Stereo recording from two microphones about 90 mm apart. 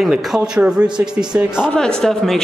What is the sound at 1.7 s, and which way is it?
Speech, 5° left (ahead or behind).